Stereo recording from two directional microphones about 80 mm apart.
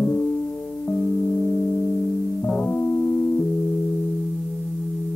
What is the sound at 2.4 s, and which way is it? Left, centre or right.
Music, centre.